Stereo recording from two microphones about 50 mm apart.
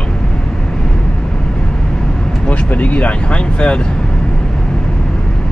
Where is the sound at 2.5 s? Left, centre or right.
Left.